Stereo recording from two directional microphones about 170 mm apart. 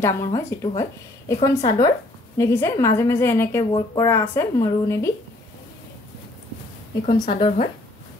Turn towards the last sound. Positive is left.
turn(degrees=30)  # may be behind; listen again after turning